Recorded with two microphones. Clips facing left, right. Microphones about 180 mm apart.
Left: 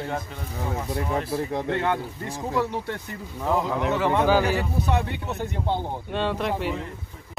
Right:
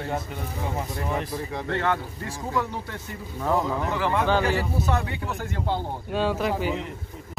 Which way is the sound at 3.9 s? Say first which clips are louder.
Left 3 dB; 20° left (ahead or behind).